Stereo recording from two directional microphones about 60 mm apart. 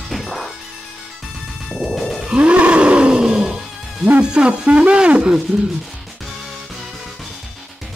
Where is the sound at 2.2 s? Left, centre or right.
Centre.